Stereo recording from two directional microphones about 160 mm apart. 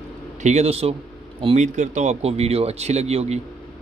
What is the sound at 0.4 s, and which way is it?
A man's voice, 45° right (ahead or behind).